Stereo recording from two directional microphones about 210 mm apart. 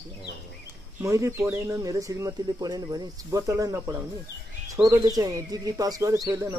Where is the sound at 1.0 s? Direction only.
15° right (ahead or behind).